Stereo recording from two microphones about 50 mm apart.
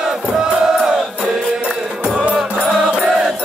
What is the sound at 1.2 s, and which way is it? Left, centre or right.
Music, right.